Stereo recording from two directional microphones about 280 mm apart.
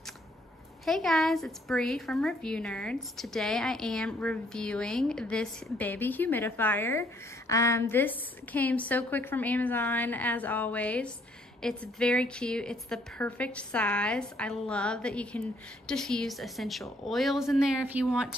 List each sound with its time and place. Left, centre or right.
0.8 s a woman's voice: centre